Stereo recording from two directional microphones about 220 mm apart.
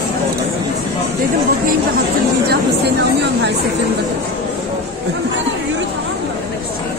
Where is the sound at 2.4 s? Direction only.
45° right (ahead or behind).